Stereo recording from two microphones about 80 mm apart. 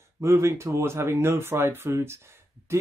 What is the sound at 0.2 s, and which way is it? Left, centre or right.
Speech, right.